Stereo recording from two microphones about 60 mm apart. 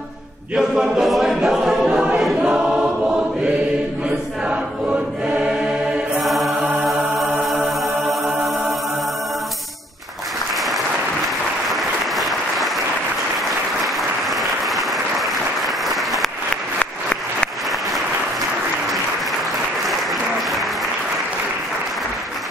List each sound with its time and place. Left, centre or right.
0.6 s a capella: centre
1.4 s choir: centre
1.9 s a capella: centre
2.6 s choir: centre
6.2 s music: centre
11.7 s applause: centre
14.3 s applause: centre
19.8 s applause: centre